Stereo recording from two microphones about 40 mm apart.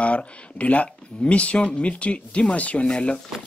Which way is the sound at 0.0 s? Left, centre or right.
Left.